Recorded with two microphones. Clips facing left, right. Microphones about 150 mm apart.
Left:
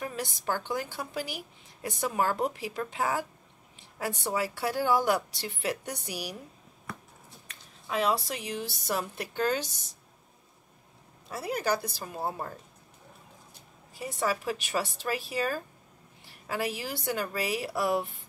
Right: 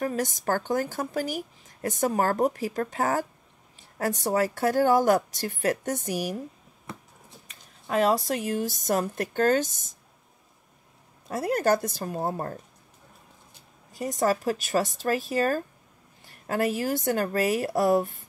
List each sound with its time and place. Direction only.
0.0 s a woman's voice: 45° right (ahead or behind)
7.9 s a woman's voice: 45° right (ahead or behind)
11.2 s a woman's voice: 50° right (ahead or behind)
13.9 s a woman's voice: 40° right (ahead or behind)